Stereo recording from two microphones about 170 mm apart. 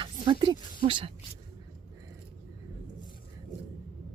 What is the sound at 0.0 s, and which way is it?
Speech, 30° right (ahead or behind).